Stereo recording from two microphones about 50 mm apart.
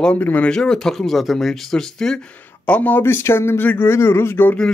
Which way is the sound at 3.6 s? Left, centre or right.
Left.